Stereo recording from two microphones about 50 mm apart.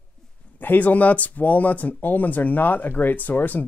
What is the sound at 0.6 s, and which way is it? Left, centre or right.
Speech, left.